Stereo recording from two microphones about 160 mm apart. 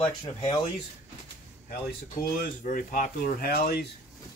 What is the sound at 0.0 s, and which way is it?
Speech, 25° left (ahead or behind).